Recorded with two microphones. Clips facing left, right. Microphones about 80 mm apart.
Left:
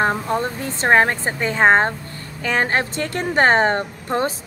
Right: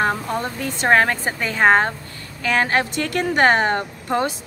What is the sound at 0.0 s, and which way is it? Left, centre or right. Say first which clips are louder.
A woman's voice: left 2 dB; left.